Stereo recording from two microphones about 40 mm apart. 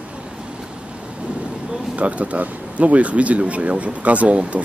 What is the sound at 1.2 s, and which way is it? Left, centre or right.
Thunder, right.